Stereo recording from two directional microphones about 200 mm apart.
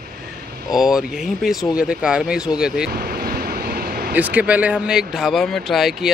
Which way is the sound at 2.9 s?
50° right (ahead or behind).